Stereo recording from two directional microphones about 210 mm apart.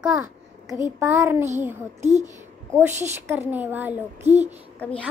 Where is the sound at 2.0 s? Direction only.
35° right (ahead or behind).